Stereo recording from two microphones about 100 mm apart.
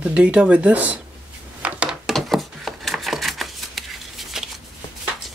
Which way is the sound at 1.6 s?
10° right (ahead or behind).